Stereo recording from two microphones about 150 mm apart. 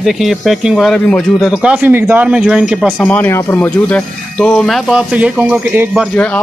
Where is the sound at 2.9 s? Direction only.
10° left (ahead or behind); by 6.0 s 15° right (ahead or behind).